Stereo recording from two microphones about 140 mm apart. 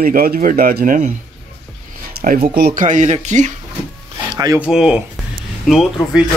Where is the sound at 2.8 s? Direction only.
65° right (ahead or behind).